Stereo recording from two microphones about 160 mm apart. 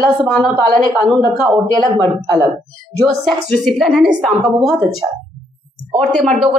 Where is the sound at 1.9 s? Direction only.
30° right (ahead or behind).